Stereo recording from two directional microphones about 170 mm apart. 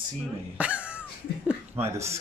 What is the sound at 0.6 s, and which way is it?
Cough, 5° right (ahead or behind).